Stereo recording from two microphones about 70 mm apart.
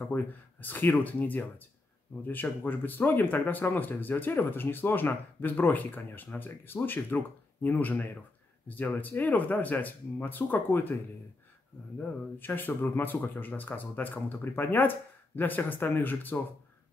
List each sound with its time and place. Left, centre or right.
0.1 s speech: left
12.0 s speech: left